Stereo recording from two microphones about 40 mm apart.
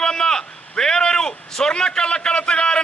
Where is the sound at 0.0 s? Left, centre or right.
Centre.